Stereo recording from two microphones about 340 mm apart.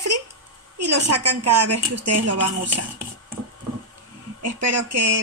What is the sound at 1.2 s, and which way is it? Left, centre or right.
Speech, right.